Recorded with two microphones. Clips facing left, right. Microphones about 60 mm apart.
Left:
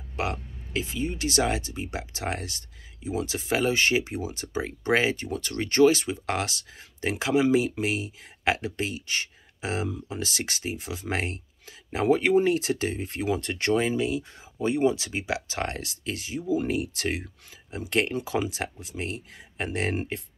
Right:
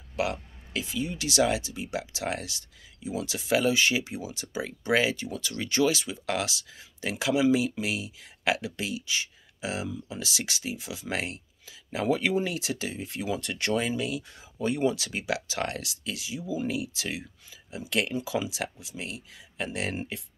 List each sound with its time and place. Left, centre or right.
0.1 s speech: left